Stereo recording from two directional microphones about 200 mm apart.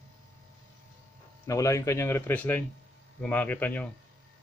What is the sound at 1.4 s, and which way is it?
A man's voice, 15° left (ahead or behind).